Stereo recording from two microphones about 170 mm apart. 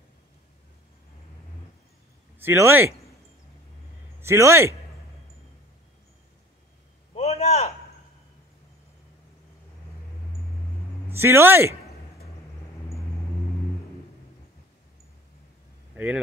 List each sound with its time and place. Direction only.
2.3 s speech: 15° right (ahead or behind)
4.2 s speech: 15° right (ahead or behind)
7.2 s a sound: 40° left (ahead or behind)
11.1 s speech: 15° right (ahead or behind)